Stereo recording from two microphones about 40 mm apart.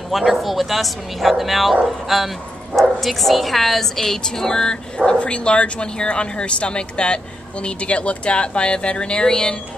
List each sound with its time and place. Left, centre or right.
0.1 s a woman's voice: centre